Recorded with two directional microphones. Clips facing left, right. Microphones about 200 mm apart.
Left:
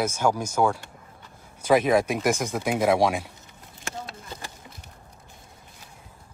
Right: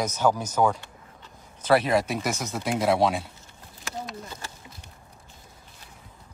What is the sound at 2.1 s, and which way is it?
Speech, 50° left (ahead or behind).